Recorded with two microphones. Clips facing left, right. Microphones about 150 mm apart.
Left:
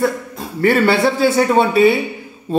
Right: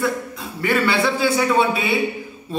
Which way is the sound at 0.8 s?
45° left (ahead or behind).